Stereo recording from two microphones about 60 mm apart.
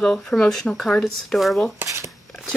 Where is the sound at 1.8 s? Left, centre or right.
Right.